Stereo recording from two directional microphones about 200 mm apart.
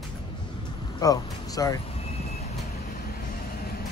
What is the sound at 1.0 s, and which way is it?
Speech, 20° left (ahead or behind).